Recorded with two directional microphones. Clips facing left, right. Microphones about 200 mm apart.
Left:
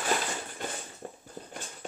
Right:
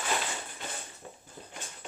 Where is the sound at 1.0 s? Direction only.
45° left (ahead or behind).